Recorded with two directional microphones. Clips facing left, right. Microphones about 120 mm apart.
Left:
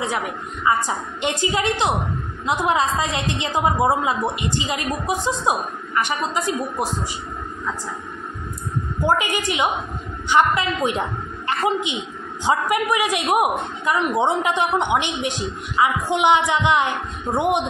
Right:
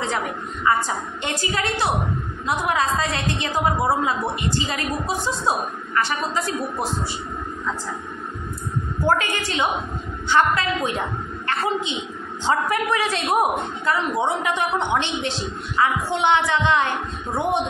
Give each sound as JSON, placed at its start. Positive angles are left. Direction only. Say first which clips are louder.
{"t": 0.7, "sound": "a woman's voice", "louder": "even", "side_deg": 15}
{"t": 9.0, "sound": "a woman's voice", "louder": "left 1 dB", "side_deg": 15}